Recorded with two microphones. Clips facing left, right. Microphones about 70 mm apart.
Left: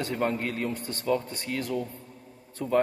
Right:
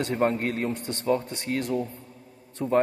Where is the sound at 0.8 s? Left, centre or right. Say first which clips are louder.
Right 3 dB; left.